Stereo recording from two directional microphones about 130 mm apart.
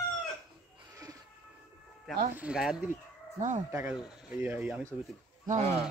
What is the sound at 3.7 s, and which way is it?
Speech, 10° right (ahead or behind).